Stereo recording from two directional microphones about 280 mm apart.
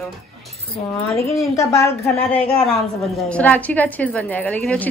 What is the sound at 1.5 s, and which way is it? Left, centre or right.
A woman's voice, centre.